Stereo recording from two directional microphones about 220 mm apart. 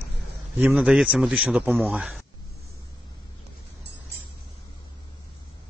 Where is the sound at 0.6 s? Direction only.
5° right (ahead or behind).